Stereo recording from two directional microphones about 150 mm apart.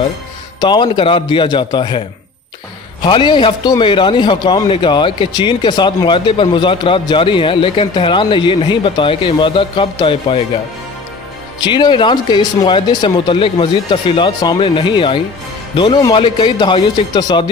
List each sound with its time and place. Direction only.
0.6 s a man's voice: 30° left (ahead or behind)
11.6 s a man's voice: 30° left (ahead or behind)